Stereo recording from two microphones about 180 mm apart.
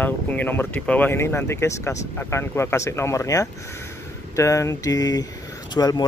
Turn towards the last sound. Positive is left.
turn(degrees=20)  # may be behind; listen again after turning